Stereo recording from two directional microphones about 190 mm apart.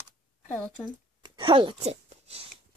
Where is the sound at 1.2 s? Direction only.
25° right (ahead or behind).